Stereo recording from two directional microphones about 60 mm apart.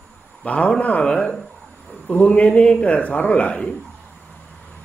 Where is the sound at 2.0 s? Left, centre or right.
Left.